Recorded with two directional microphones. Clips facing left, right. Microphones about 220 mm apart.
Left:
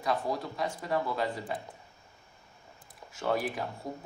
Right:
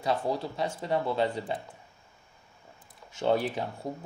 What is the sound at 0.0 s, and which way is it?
Speech, 30° right (ahead or behind).